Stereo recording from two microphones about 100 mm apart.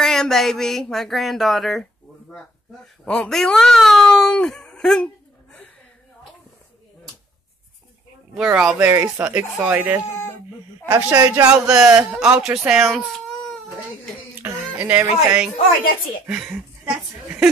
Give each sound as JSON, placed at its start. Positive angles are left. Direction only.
{"t": 0.0, "sound": "a sound", "side_deg": 5}
{"t": 3.1, "sound": "speech", "side_deg": 5}
{"t": 8.5, "sound": "speech", "side_deg": -10}
{"t": 8.8, "sound": "speech", "side_deg": -25}
{"t": 11.4, "sound": "speech", "side_deg": -10}
{"t": 12.9, "sound": "baby cry", "side_deg": 5}
{"t": 14.4, "sound": "speech", "side_deg": -20}